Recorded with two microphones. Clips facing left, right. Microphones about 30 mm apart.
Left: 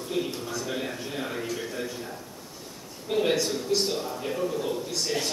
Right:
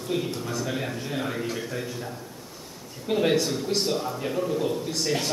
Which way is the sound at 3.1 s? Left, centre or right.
Centre.